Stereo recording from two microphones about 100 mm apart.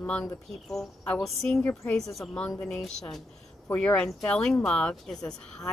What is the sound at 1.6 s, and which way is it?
Speech, 20° left (ahead or behind).